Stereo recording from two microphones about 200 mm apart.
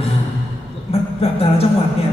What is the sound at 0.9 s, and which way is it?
Speech, 30° left (ahead or behind).